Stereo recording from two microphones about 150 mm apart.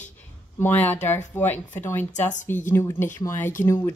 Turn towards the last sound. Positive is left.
turn(degrees=20)  # may be behind; listen again after turning